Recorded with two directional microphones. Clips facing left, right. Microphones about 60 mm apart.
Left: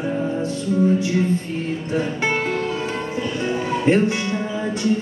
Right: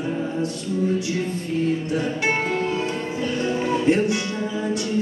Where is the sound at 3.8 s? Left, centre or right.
Left.